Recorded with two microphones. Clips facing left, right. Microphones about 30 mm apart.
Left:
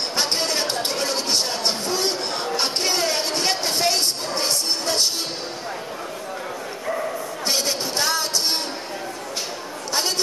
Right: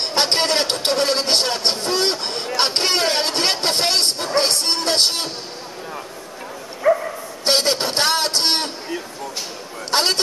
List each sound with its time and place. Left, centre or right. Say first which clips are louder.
0.1 s speech: right 6 dB; right
6.8 s bow-wow: right 11 dB; right
7.4 s speech: right 6 dB; right
9.8 s a woman's voice: right 5 dB; right